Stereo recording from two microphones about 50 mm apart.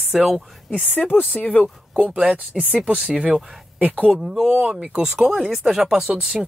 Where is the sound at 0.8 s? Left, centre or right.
Left.